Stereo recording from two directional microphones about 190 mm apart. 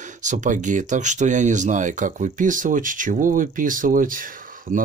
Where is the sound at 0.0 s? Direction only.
40° right (ahead or behind).